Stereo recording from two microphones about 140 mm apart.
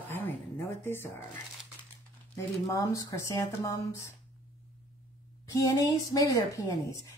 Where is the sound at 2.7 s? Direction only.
25° left (ahead or behind).